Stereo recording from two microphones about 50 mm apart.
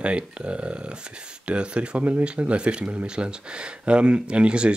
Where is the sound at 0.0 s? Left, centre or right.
Right.